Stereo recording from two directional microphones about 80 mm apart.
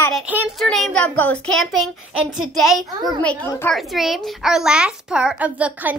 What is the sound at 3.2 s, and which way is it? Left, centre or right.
Speech, left.